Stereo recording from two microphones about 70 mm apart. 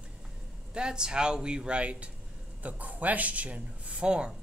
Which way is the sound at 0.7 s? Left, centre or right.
Centre.